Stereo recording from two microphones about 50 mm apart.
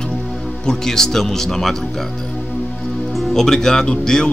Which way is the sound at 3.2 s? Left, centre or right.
Centre.